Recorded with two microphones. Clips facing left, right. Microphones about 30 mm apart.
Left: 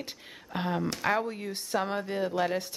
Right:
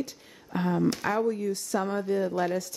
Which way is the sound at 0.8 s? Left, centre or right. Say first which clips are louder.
Right 6 dB; centre.